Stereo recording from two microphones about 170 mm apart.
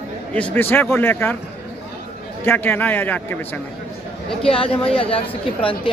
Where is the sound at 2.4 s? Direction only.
10° left (ahead or behind).